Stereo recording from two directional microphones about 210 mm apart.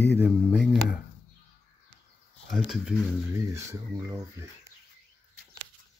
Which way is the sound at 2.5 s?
Centre (ahead or behind).